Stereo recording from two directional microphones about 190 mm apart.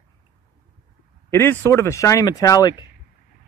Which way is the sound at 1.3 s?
15° left (ahead or behind).